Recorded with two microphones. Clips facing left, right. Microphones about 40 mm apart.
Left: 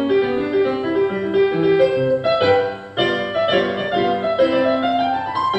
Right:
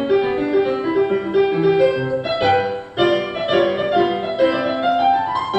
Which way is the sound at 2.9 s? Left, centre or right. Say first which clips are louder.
Right 1 dB; centre.